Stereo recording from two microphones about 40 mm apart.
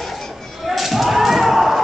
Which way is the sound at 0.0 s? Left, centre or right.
Centre.